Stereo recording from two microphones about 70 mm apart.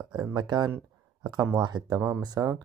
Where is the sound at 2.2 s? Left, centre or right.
Right.